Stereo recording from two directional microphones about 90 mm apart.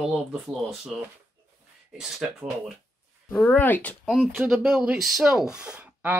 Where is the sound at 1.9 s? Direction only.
5° right (ahead or behind).